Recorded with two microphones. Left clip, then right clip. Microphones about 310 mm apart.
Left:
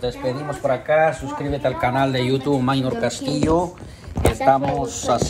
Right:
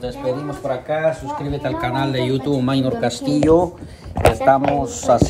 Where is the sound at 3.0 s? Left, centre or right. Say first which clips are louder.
Right 2 dB; centre.